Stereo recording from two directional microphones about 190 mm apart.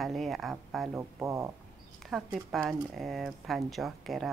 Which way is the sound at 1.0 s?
15° right (ahead or behind).